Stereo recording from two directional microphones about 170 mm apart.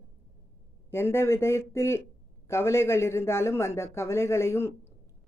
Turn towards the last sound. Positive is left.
turn(degrees=15)  # may be behind; listen again after turning